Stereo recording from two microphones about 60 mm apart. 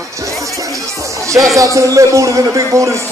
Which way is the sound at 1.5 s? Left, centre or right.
Right.